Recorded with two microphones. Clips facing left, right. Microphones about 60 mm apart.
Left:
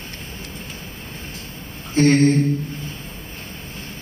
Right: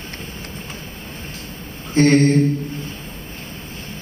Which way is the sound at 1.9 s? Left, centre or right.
Right.